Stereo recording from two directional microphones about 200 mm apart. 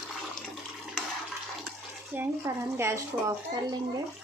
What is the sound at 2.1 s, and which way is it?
Speech, 15° right (ahead or behind).